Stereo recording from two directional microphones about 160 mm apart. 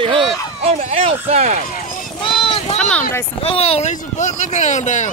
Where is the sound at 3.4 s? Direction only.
40° left (ahead or behind).